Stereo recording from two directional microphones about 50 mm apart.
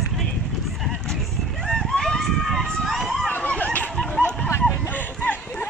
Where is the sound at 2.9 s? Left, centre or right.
Centre.